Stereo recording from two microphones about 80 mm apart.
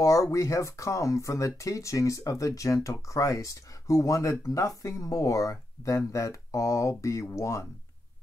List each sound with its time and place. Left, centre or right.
0.0 s speech: left